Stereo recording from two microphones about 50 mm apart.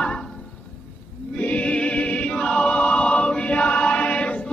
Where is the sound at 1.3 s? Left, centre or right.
Left.